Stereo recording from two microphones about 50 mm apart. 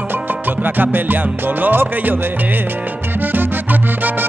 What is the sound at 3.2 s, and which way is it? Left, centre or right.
Music, right.